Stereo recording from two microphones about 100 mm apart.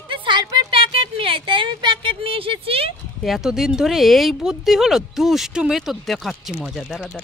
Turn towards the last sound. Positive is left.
turn(degrees=0)  # may be behind; listen again after turning